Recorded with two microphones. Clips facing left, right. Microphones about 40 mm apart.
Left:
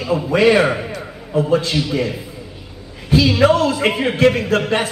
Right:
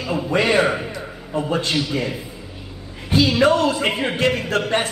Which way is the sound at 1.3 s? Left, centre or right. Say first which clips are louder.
Left 5 dB; centre.